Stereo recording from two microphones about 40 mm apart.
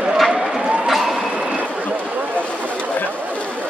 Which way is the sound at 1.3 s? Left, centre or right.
Right.